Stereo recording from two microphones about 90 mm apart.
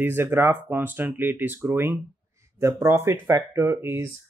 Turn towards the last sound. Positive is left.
turn(degrees=-30)  # may be behind; listen again after turning